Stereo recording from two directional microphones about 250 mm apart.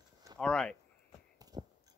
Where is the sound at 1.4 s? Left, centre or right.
Centre.